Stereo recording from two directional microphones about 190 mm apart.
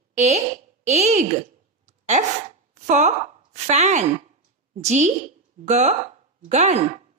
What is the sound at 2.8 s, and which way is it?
A woman's voice, 40° right (ahead or behind).